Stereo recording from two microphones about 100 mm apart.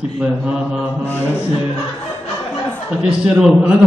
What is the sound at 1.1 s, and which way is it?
Speech, 25° left (ahead or behind).